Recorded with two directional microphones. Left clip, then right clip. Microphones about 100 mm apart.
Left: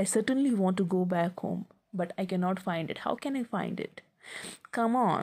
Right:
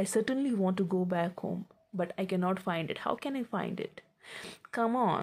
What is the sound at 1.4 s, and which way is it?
Speech, 15° left (ahead or behind).